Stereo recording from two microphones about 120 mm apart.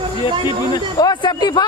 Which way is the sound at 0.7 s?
35° left (ahead or behind).